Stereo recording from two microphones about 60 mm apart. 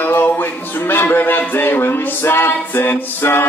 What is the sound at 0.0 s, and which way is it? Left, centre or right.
Music, left.